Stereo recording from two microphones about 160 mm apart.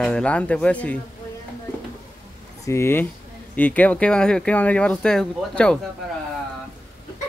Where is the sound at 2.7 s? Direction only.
15° left (ahead or behind).